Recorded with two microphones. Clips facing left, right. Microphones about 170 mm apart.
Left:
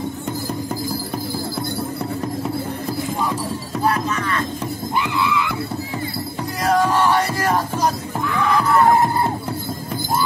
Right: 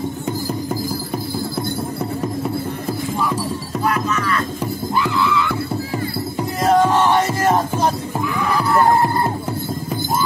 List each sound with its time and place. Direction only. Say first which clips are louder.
3.8 s music: even; 30° left (ahead or behind)
6.6 s music: right 3 dB; 25° right (ahead or behind)
8.4 s music: left 3 dB; 10° right (ahead or behind)